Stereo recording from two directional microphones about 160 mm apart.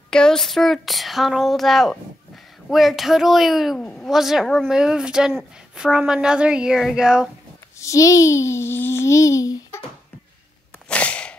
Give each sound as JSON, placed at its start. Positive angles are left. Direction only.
{"t": 0.1, "sound": "speech", "side_deg": 5}
{"t": 7.8, "sound": "a child's voice", "side_deg": 20}
{"t": 10.9, "sound": "a sound", "side_deg": 5}